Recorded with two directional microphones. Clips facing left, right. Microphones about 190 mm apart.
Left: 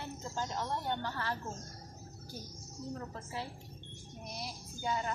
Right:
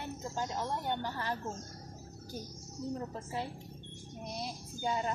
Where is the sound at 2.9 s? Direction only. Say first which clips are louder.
Right 3 dB; 20° right (ahead or behind).